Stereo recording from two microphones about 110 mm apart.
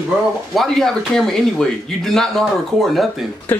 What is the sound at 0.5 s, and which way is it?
Speech, centre (ahead or behind).